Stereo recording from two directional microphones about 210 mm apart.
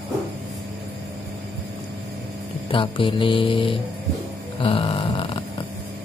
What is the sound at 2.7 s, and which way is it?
Speech, 25° left (ahead or behind).